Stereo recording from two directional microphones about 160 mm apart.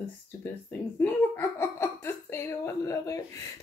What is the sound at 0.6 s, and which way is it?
Speech, 10° left (ahead or behind).